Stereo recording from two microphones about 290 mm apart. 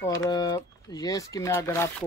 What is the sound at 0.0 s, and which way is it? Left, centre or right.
Speech, centre.